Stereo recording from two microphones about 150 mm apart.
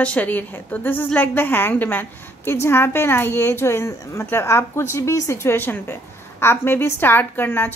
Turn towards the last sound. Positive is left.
turn(degrees=15)  # may be behind; listen again after turning